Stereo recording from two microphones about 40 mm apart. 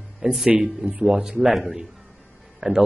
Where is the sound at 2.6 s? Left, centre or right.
Centre.